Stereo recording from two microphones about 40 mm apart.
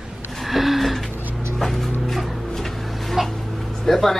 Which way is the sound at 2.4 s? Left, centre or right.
Centre.